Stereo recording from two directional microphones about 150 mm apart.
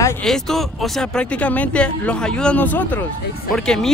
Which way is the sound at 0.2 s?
Centre (ahead or behind).